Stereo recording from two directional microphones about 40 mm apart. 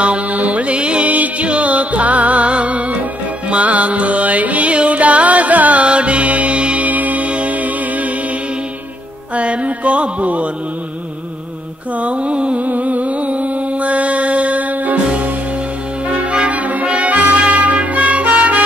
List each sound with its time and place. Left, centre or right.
0.0 s music: right
9.3 s music: right
12.0 s mantra: right
12.6 s mantra: right
16.1 s music: right